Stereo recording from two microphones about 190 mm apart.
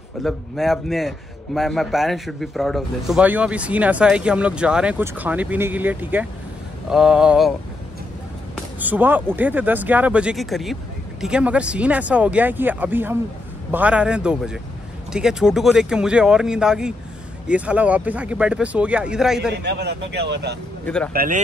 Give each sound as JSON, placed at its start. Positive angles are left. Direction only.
{"t": 0.2, "sound": "a man's voice", "side_deg": 0}
{"t": 8.7, "sound": "a man's voice", "side_deg": -10}
{"t": 19.5, "sound": "speech", "side_deg": -60}
{"t": 20.8, "sound": "speech", "side_deg": 5}
{"t": 21.1, "sound": "speech", "side_deg": -50}